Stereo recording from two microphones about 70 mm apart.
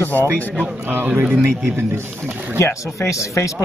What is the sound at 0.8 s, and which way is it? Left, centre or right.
Speech, right.